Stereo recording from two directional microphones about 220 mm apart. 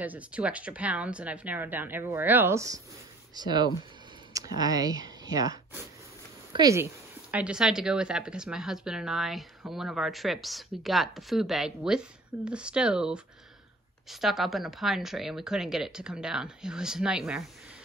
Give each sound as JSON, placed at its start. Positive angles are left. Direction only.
{"t": 0.0, "sound": "a woman's voice", "side_deg": -5}
{"t": 14.2, "sound": "a woman's voice", "side_deg": 0}